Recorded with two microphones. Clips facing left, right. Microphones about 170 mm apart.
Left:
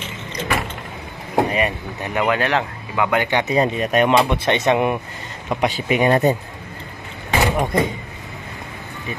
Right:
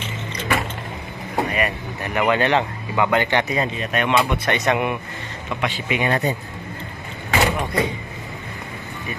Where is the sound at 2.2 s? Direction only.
Centre (ahead or behind).